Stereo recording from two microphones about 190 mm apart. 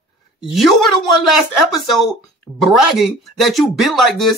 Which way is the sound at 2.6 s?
Centre (ahead or behind).